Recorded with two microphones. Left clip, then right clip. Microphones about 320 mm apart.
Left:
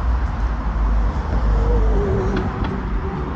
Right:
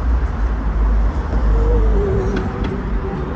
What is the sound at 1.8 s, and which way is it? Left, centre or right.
Vehicle, left.